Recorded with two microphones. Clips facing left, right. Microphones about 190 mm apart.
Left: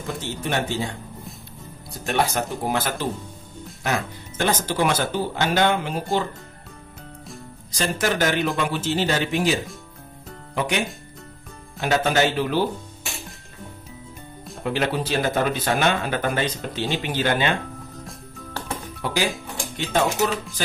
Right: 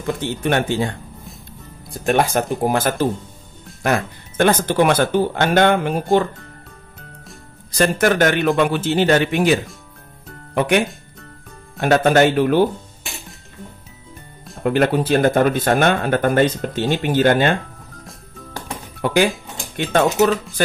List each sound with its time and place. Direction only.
0.2 s speech: 60° right (ahead or behind)
2.0 s speech: 50° right (ahead or behind)
7.7 s speech: 55° right (ahead or behind)
11.8 s speech: 55° right (ahead or behind)
14.6 s speech: 50° right (ahead or behind)
18.9 s speech: 55° right (ahead or behind)